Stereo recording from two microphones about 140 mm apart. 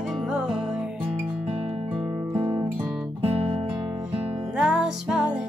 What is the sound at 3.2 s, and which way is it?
Music, 45° right (ahead or behind).